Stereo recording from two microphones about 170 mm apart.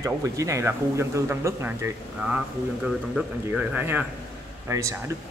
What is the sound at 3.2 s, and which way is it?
Speech, 5° right (ahead or behind).